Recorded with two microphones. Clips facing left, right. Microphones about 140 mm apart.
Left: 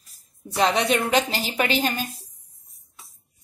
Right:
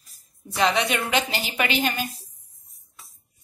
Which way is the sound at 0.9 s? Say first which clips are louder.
Left 3 dB; 35° left (ahead or behind).